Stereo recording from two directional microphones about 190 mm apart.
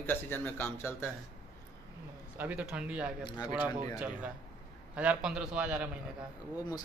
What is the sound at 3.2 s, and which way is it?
Speech, 20° left (ahead or behind).